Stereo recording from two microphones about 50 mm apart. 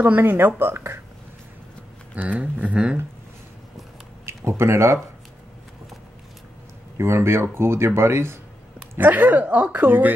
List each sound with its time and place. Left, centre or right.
0.0 s speech: right
2.1 s a woman's voice: right
4.5 s speech: right
7.0 s speech: right
8.9 s a woman's voice: right